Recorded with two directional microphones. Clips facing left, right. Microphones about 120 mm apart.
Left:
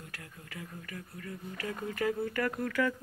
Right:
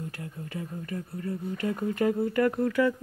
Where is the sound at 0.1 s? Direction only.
25° right (ahead or behind).